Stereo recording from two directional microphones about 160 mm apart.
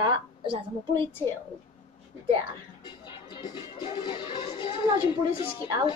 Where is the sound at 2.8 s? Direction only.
30° left (ahead or behind).